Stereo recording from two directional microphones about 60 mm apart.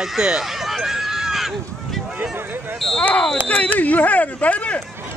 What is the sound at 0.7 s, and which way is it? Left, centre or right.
Run, centre.